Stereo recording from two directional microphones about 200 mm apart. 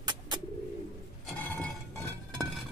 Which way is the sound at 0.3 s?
20° right (ahead or behind).